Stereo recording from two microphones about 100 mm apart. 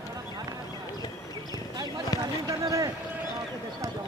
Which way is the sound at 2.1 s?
35° left (ahead or behind).